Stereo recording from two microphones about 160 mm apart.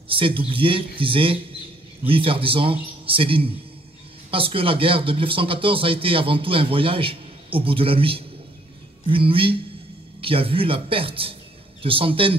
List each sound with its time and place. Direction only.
0.1 s speech: 35° right (ahead or behind)